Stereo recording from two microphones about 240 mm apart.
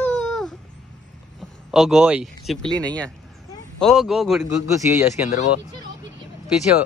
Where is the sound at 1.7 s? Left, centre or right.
Centre.